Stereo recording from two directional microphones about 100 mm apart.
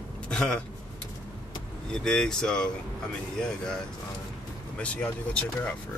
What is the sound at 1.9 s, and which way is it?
Speech, 5° left (ahead or behind).